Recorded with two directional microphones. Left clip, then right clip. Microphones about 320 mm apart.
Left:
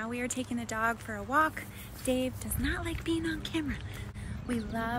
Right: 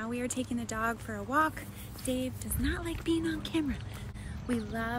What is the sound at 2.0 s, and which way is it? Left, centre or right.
Speech, centre.